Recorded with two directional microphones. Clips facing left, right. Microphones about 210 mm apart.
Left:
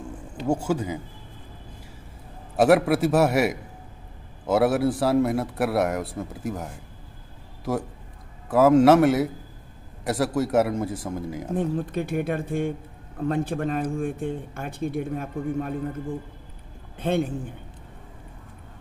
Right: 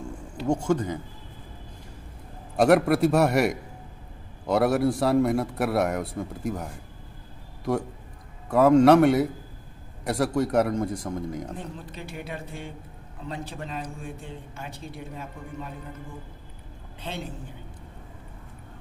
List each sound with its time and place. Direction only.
0.5 s speech: 5° left (ahead or behind)
2.5 s a man's voice: 5° left (ahead or behind)
11.5 s a man's voice: 55° left (ahead or behind)
17.0 s a man's voice: 55° left (ahead or behind)